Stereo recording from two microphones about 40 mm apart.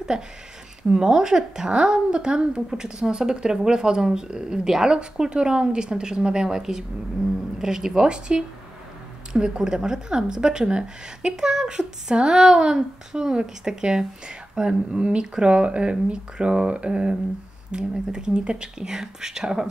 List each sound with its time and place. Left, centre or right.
0.1 s a woman's voice: centre